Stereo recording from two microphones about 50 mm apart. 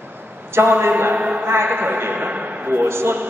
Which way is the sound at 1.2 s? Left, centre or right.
Right.